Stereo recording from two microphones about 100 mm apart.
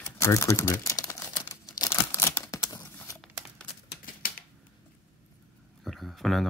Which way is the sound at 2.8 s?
20° left (ahead or behind).